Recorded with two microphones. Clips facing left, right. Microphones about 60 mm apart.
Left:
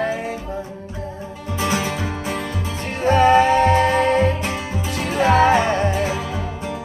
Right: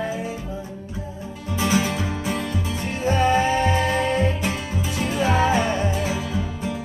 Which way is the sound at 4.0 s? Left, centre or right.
Left.